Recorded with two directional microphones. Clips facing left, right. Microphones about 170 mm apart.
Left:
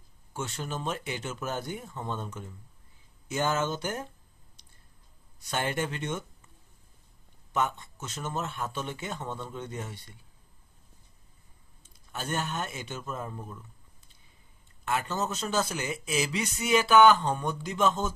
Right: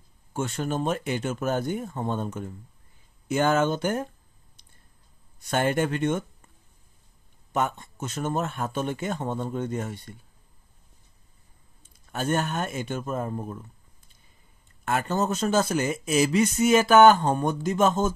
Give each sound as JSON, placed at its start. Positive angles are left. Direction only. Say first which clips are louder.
{"t": 0.3, "sound": "speech", "louder": "right 7 dB", "side_deg": -50}
{"t": 5.4, "sound": "speech", "louder": "right 7 dB", "side_deg": -50}
{"t": 7.5, "sound": "speech", "louder": "right 3 dB", "side_deg": -50}
{"t": 12.1, "sound": "speech", "louder": "right 7 dB", "side_deg": -50}
{"t": 14.9, "sound": "speech", "louder": "right 5 dB", "side_deg": -50}